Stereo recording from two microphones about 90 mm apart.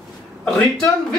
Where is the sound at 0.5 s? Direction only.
5° left (ahead or behind).